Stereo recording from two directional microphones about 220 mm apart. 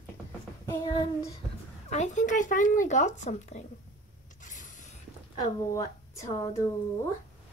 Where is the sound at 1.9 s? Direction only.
30° left (ahead or behind).